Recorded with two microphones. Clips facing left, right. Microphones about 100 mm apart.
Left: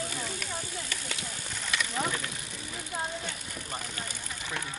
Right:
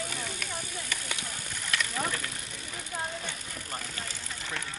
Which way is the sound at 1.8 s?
5° left (ahead or behind).